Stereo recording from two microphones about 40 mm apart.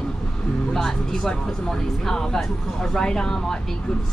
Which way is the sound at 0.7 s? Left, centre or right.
Centre.